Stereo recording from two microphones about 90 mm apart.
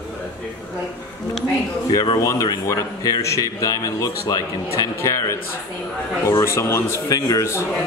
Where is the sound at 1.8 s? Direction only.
45° left (ahead or behind).